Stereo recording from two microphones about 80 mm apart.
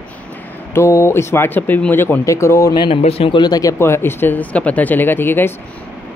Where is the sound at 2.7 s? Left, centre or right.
Left.